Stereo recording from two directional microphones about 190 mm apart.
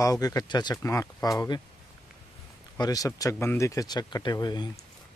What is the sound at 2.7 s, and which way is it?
Speech, 20° left (ahead or behind).